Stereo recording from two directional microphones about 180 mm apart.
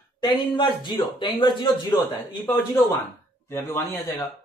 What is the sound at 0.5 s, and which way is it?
Speech, 25° left (ahead or behind).